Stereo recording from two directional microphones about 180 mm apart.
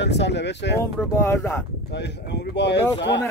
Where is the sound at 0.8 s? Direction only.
15° left (ahead or behind).